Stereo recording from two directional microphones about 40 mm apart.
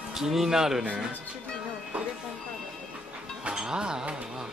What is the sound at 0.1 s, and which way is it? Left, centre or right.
Speech, centre.